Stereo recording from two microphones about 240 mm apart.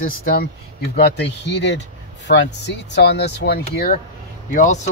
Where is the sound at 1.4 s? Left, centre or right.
Left.